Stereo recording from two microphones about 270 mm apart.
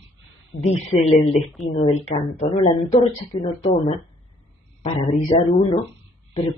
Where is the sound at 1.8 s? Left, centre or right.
Left.